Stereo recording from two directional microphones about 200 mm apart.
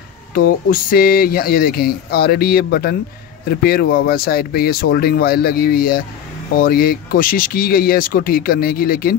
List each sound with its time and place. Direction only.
0.3 s speech: 45° left (ahead or behind)